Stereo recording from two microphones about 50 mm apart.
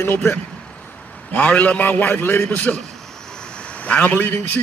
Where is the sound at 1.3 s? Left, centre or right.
Left.